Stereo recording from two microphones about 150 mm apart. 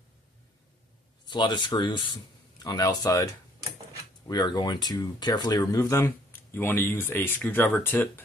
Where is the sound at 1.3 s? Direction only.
30° left (ahead or behind); by 8.2 s 15° left (ahead or behind).